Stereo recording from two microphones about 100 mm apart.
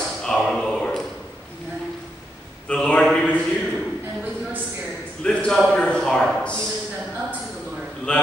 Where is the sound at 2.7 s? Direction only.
10° left (ahead or behind).